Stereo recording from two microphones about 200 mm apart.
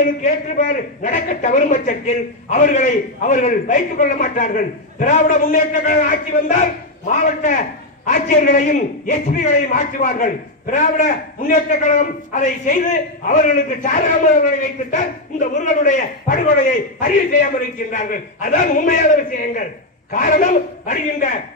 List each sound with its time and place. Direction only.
0.0 s a man's voice: 40° left (ahead or behind)